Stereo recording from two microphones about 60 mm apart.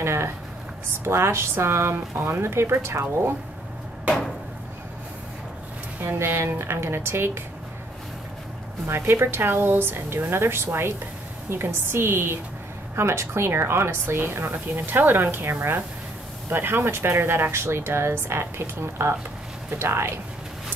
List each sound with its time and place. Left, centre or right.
0.0 s a sound: right
1.0 s speech: right
6.0 s speech: right
8.8 s a woman's voice: right